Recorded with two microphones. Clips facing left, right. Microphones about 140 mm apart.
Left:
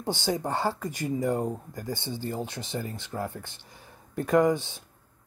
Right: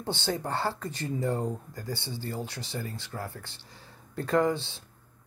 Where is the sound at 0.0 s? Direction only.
15° left (ahead or behind).